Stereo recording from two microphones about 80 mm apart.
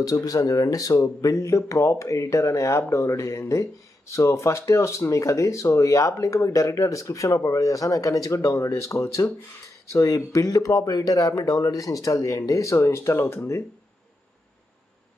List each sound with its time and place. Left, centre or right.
0.0 s speech: left